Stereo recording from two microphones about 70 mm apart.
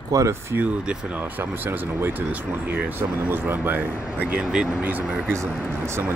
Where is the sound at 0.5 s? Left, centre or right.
Centre.